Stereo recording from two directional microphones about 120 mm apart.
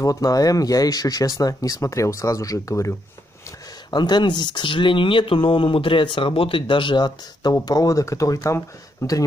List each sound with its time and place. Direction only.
0.0 s speech: 30° left (ahead or behind)
3.9 s speech: 35° left (ahead or behind)